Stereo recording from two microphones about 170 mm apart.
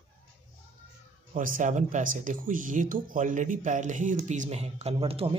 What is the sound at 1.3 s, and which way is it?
Speech, 50° right (ahead or behind).